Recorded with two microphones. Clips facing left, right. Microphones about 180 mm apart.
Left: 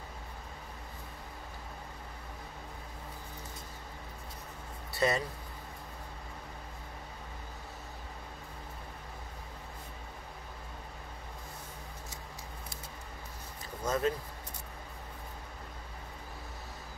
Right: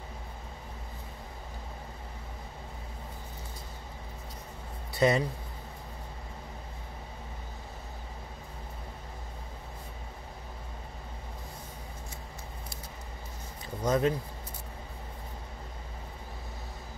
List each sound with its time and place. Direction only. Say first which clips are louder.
4.9 s speech: right 5 dB; 20° right (ahead or behind)
13.8 s speech: right 4 dB; 15° right (ahead or behind)